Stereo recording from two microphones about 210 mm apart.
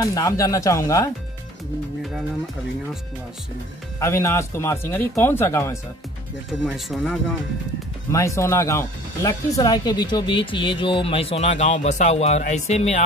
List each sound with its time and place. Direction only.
0.0 s speech: 15° left (ahead or behind)
4.0 s speech: 15° left (ahead or behind)
6.6 s speech: centre (ahead or behind)
8.1 s speech: 15° left (ahead or behind); by 13.0 s 30° left (ahead or behind)